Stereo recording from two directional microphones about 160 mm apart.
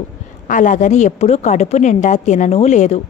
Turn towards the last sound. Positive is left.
turn(degrees=45)  # may be behind; listen again after turning